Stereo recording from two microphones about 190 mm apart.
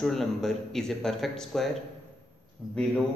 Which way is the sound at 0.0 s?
Centre (ahead or behind).